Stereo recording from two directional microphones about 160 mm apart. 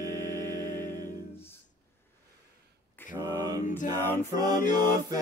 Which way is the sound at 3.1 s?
20° right (ahead or behind).